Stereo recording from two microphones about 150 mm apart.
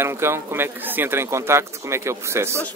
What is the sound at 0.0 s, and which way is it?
Speech, 15° right (ahead or behind).